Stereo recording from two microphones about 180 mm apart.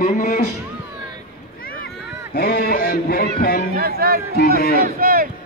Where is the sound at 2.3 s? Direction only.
60° left (ahead or behind).